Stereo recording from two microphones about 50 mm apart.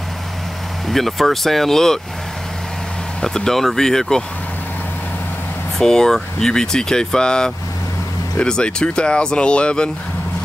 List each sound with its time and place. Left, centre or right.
0.8 s speech: centre
3.2 s speech: centre
5.8 s speech: centre